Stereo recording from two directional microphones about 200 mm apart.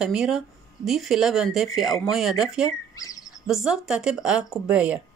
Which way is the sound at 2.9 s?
15° left (ahead or behind).